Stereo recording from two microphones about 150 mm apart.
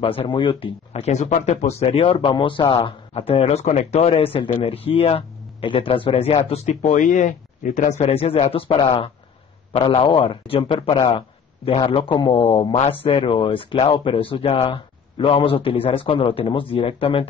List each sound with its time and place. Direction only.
0.0 s speech: 40° left (ahead or behind); by 7.9 s 55° left (ahead or behind)
8.0 s speech: 40° left (ahead or behind)